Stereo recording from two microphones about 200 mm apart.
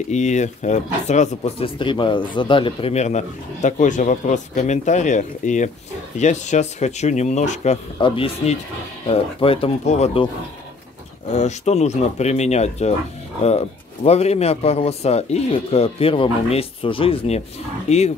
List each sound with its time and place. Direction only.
0.1 s speech: 35° left (ahead or behind)
11.3 s speech: 35° left (ahead or behind)